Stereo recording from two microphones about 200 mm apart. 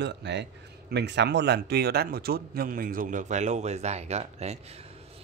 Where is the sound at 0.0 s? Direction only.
60° right (ahead or behind).